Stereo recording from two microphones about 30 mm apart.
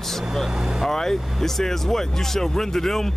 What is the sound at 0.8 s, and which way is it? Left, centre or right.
Speech, centre.